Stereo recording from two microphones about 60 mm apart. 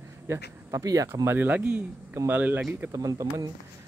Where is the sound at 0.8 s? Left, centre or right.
Right.